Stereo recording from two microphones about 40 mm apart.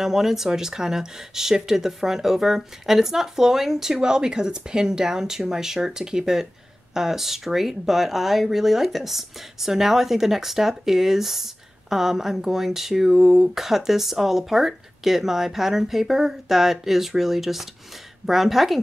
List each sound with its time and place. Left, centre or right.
0.0 s a woman's voice: centre